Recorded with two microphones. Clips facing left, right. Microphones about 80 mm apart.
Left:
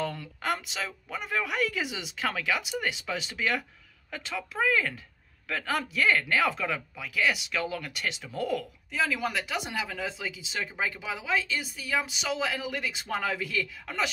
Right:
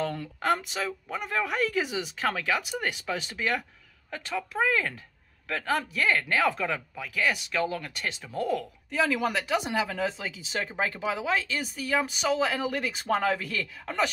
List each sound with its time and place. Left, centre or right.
0.0 s speech: right